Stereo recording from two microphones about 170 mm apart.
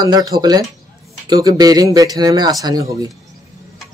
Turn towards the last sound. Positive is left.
turn(degrees=-20)  # may be behind; listen again after turning